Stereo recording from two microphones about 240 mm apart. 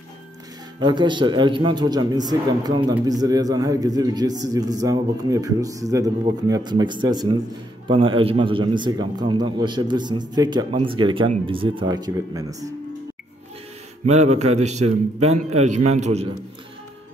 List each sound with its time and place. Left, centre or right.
0.7 s a man's voice: centre
14.0 s a man's voice: right